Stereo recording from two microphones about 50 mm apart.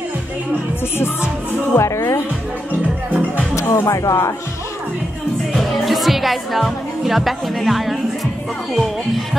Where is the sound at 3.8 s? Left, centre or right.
Left.